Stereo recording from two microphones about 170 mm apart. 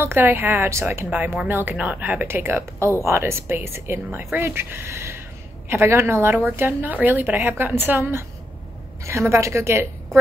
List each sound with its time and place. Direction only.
0.0 s a woman's voice: 15° right (ahead or behind)